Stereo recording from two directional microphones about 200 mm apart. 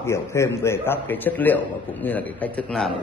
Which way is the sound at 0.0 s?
15° left (ahead or behind).